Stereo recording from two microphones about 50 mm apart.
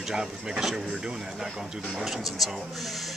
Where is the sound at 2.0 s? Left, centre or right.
Centre.